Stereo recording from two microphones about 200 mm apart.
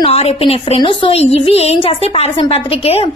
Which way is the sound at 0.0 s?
30° left (ahead or behind).